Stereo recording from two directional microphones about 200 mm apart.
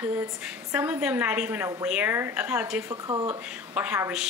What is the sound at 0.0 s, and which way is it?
Speech, 10° right (ahead or behind).